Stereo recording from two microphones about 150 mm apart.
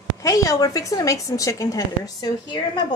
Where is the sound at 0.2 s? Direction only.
20° left (ahead or behind).